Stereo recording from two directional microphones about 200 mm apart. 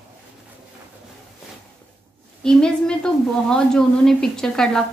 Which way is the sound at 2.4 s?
5° left (ahead or behind).